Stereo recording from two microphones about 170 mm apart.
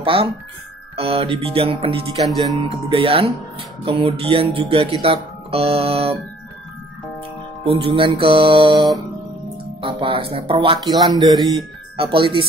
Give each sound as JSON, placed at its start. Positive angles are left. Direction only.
{"t": 0.0, "sound": "speech", "side_deg": -30}
{"t": 0.9, "sound": "music", "side_deg": -35}
{"t": 5.0, "sound": "speech", "side_deg": -35}
{"t": 7.6, "sound": "music", "side_deg": -30}
{"t": 9.8, "sound": "speech", "side_deg": -30}
{"t": 10.3, "sound": "music", "side_deg": -35}
{"t": 11.1, "sound": "speech", "side_deg": -25}
{"t": 12.0, "sound": "music", "side_deg": -30}